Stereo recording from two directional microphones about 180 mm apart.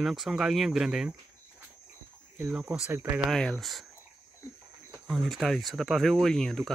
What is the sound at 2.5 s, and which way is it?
Speech, 5° right (ahead or behind).